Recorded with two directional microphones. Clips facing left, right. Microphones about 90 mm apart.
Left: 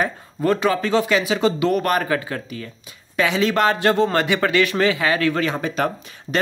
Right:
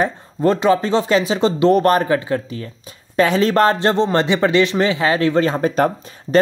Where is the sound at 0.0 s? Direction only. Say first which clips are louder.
Right 4 dB; 25° right (ahead or behind).